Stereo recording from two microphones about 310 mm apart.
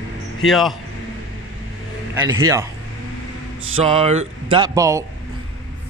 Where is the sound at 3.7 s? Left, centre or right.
Centre.